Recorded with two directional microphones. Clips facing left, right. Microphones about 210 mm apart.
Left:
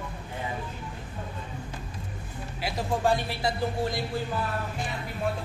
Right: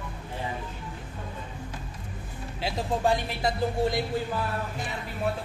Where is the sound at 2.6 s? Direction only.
20° right (ahead or behind).